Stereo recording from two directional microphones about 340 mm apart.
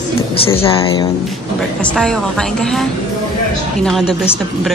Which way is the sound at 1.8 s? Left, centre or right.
Centre.